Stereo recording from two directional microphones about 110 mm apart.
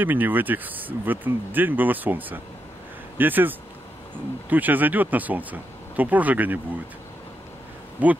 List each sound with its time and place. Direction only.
0.0 s speech: 15° right (ahead or behind)
8.0 s speech: 15° right (ahead or behind)